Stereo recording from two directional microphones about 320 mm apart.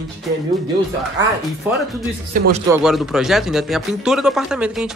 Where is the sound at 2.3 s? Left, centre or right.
Right.